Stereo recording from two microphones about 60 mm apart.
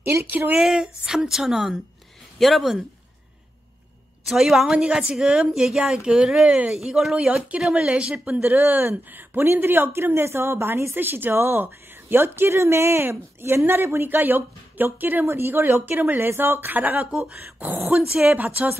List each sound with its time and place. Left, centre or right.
0.0 s speech: right
0.6 s speech: centre
4.3 s speech: centre; by 17.1 s right
18.2 s speech: right